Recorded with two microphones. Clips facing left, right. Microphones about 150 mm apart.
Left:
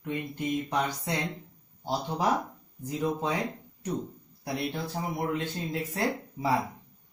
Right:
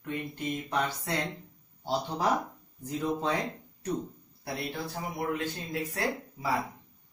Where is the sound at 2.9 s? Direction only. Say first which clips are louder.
Left 1 dB; 15° left (ahead or behind).